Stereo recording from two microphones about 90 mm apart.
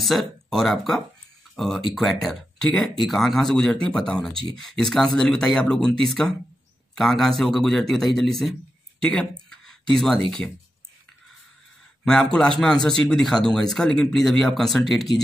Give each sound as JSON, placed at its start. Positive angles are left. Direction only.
{"t": 0.0, "sound": "a man's voice", "side_deg": 0}
{"t": 9.0, "sound": "a man's voice", "side_deg": 15}
{"t": 9.5, "sound": "a sound", "side_deg": 5}
{"t": 12.0, "sound": "a man's voice", "side_deg": 10}